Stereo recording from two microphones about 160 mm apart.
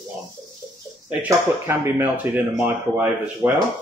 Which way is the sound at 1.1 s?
10° right (ahead or behind).